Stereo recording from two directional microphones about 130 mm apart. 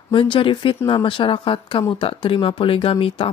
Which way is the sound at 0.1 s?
40° left (ahead or behind).